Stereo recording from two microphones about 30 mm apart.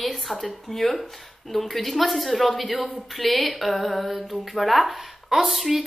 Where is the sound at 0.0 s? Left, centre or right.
Centre.